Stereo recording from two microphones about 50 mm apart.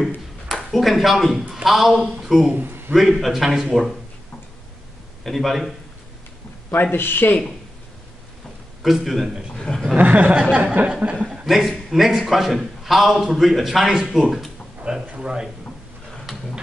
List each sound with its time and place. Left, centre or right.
0.0 s a sound: centre
1.5 s a man's voice: centre
2.5 s a man's voice: right
2.9 s a man's voice: centre
5.2 s a man's voice: centre
6.7 s speech: left
8.8 s a man's voice: centre
9.5 s a man's voice: centre
9.9 s speech: right
10.5 s a sound: right
11.4 s a man's voice: centre
15.0 s speech: centre
16.3 s a sound: centre